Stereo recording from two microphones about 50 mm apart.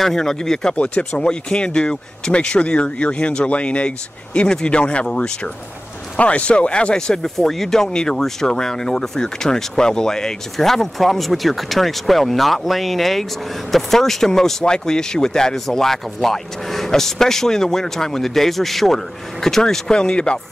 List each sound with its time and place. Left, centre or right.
0.0 s speech: centre
0.7 s speech: left